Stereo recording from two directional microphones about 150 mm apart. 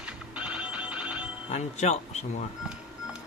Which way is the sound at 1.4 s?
45° left (ahead or behind).